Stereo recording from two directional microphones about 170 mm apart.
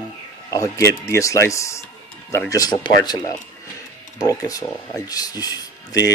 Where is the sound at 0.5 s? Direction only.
20° left (ahead or behind).